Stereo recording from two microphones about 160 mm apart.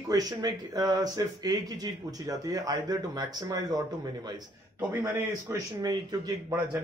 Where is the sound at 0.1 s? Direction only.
20° right (ahead or behind).